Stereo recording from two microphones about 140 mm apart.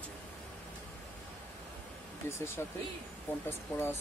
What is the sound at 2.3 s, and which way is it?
Speech, 15° left (ahead or behind).